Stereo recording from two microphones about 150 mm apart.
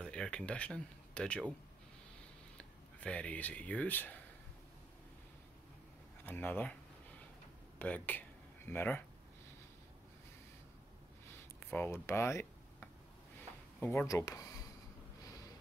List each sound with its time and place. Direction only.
0.0 s speech: 5° left (ahead or behind)
2.5 s speech: 10° left (ahead or behind)
6.2 s speech: 15° left (ahead or behind)
7.8 s speech: 10° left (ahead or behind)
11.7 s speech: 15° left (ahead or behind)
14.0 s speech: 20° left (ahead or behind)